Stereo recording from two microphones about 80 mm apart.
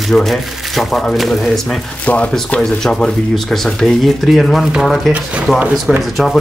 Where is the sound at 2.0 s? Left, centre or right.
Centre.